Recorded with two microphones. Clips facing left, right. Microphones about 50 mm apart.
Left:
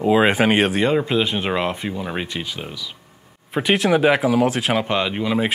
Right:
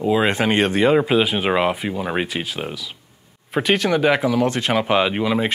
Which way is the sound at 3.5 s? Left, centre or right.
Centre.